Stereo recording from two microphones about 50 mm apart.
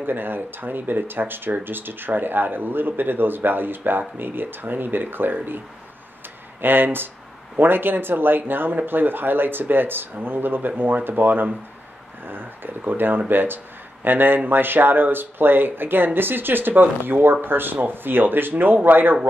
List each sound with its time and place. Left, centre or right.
0.0 s speech: right
6.6 s speech: right